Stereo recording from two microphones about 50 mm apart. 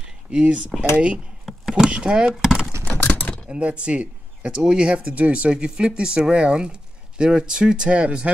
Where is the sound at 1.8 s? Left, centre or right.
Centre.